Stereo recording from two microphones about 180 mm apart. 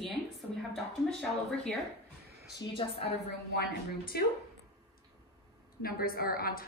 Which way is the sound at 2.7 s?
30° left (ahead or behind).